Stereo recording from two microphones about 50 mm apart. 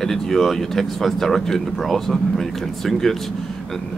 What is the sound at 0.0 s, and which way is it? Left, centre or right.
Speech, centre.